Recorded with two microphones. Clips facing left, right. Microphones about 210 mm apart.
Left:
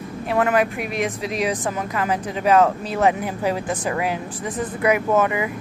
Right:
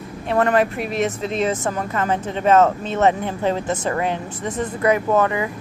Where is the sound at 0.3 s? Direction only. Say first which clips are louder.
Right 2 dB; 5° left (ahead or behind).